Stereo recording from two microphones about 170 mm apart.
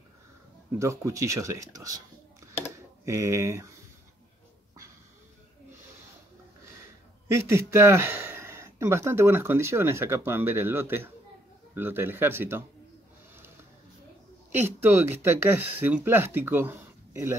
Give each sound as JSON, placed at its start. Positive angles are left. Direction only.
{"t": 0.7, "sound": "speech", "side_deg": -20}
{"t": 3.1, "sound": "speech", "side_deg": -15}
{"t": 7.2, "sound": "speech", "side_deg": -15}
{"t": 14.5, "sound": "speech", "side_deg": -15}